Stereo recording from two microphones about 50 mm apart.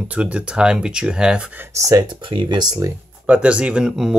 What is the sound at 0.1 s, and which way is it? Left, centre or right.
Speech, right.